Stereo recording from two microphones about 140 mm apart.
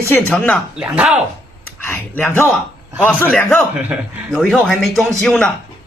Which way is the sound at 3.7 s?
10° right (ahead or behind).